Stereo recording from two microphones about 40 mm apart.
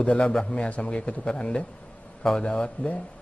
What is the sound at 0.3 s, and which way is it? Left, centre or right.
Speech, centre.